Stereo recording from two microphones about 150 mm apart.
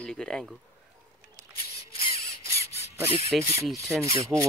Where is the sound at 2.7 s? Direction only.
45° left (ahead or behind).